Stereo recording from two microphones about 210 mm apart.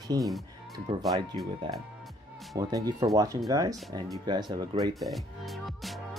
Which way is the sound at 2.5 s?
15° right (ahead or behind).